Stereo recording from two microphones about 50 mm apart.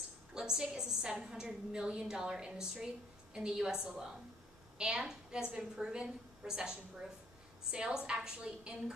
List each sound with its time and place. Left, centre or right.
0.3 s a woman's voice: centre